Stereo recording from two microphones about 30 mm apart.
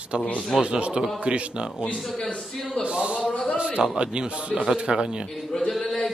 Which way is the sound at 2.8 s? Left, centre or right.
Right.